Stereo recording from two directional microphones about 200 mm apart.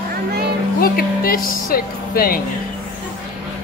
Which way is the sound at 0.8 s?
45° left (ahead or behind).